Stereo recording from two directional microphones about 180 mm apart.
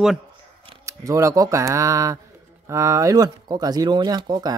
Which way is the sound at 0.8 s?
15° right (ahead or behind).